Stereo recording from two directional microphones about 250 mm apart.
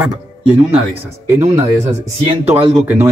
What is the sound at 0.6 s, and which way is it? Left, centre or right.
Speech, right.